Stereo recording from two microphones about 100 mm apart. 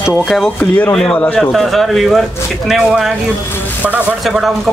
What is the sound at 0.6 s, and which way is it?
Speech, 20° left (ahead or behind).